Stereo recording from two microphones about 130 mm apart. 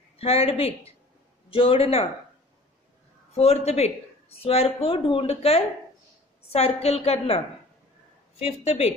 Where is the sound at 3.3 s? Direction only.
55° left (ahead or behind).